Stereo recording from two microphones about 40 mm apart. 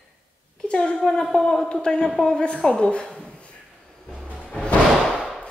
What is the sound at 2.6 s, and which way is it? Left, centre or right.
Speech, centre.